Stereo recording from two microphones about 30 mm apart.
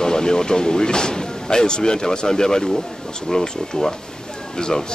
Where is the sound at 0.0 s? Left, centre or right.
Left.